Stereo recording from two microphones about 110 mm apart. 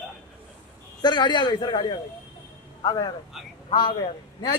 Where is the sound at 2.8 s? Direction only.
40° left (ahead or behind).